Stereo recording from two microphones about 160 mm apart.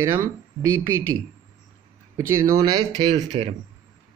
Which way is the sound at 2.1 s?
20° right (ahead or behind).